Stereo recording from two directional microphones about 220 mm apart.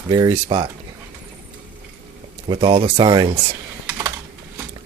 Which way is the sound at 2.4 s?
25° right (ahead or behind).